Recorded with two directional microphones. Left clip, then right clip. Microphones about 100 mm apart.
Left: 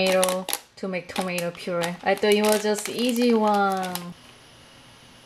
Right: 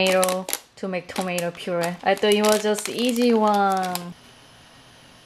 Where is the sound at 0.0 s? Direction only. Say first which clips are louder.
Right 1 dB; 15° right (ahead or behind).